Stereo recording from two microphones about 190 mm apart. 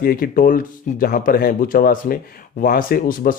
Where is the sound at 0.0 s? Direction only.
50° left (ahead or behind).